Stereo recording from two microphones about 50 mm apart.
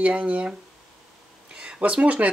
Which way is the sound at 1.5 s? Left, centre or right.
Right.